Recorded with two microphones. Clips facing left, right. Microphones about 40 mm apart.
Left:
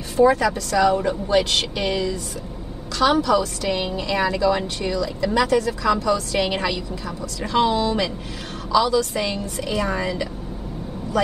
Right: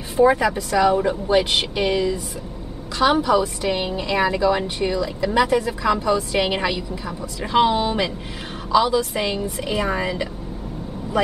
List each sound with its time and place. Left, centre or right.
0.2 s a woman's voice: centre